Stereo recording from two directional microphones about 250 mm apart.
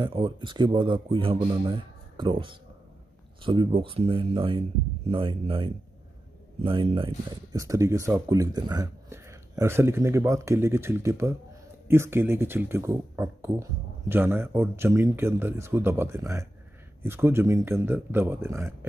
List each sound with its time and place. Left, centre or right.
0.0 s speech: centre